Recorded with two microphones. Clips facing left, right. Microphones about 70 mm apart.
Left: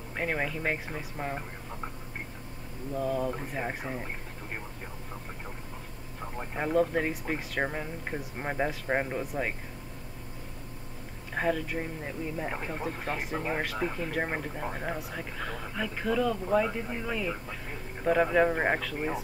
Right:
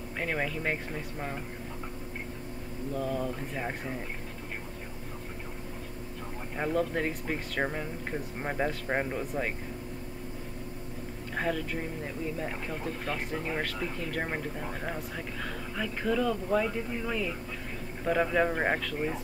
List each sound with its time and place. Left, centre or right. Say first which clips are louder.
0.2 s speech: left 1 dB; centre
2.9 s speech: left 2 dB; centre
6.5 s speech: left 3 dB; centre
11.3 s speech: left 2 dB; centre
12.4 s speech: left 1 dB; centre
13.3 s speech: left 1 dB; centre
15.0 s speech: even; centre
16.4 s speech: left 1 dB; centre